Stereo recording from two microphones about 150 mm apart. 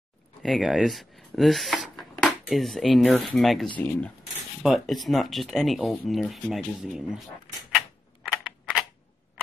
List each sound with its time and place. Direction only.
0.4 s speech: centre (ahead or behind)
4.6 s speech: centre (ahead or behind)
7.7 s typewriter: centre (ahead or behind)